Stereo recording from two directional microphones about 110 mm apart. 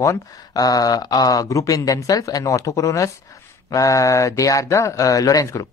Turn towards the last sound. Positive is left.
turn(degrees=30)  # may be behind; listen again after turning